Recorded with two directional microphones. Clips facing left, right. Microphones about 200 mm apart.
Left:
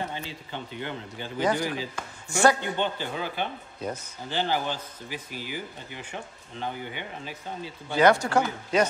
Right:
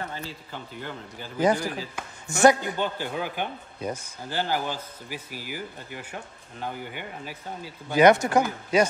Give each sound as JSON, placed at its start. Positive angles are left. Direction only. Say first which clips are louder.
{"t": 0.5, "sound": "speech", "louder": "left 2 dB", "side_deg": -5}
{"t": 2.2, "sound": "a man's voice", "louder": "right 3 dB", "side_deg": -20}
{"t": 2.6, "sound": "speech", "louder": "even", "side_deg": -10}